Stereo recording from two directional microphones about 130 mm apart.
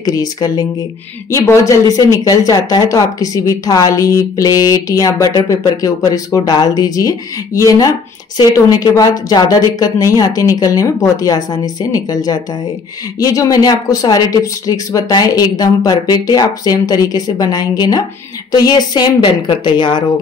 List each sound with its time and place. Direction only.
0.0 s speech: 30° left (ahead or behind)